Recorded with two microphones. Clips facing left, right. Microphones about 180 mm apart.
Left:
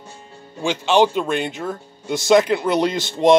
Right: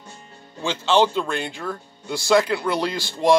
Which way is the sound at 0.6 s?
15° left (ahead or behind).